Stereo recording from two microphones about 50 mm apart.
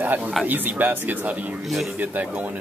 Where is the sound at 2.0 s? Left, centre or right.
Right.